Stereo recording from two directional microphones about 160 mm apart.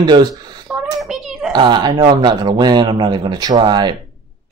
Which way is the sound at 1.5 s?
30° right (ahead or behind).